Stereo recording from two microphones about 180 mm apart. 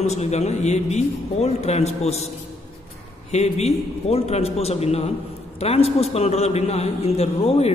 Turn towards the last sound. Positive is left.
turn(degrees=35)  # may be behind; listen again after turning